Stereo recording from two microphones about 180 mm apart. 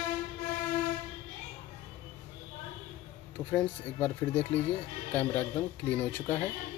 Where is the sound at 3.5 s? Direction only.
10° left (ahead or behind).